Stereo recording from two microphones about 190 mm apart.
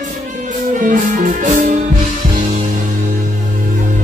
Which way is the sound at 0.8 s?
45° right (ahead or behind).